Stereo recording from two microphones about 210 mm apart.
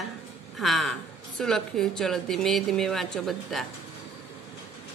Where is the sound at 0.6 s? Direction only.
Centre (ahead or behind).